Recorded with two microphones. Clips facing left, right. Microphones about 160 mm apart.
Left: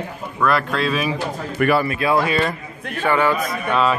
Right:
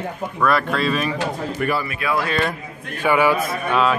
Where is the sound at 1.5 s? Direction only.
65° left (ahead or behind).